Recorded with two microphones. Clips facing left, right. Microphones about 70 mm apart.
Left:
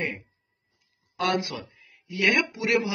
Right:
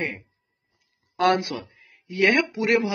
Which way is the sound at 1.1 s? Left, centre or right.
Right.